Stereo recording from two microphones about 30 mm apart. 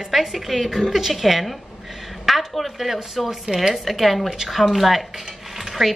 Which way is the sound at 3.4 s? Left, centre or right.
Right.